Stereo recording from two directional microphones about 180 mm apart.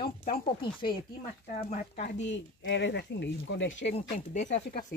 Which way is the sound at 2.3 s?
90° left.